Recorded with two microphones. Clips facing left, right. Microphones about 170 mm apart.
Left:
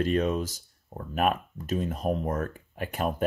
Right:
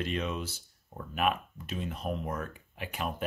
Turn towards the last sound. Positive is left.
turn(degrees=45)  # may be behind; listen again after turning